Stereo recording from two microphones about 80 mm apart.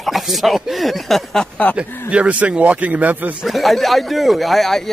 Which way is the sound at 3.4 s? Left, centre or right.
Centre.